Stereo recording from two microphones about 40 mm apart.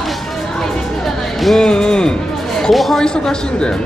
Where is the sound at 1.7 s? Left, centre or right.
Centre.